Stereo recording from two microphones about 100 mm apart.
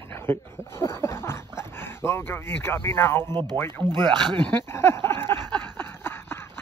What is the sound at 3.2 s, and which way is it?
Speech, 45° right (ahead or behind).